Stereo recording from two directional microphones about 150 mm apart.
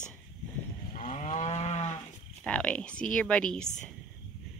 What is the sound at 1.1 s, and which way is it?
Moo, 50° left (ahead or behind).